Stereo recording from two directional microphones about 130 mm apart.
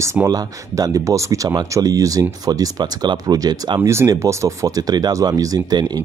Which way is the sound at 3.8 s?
20° right (ahead or behind).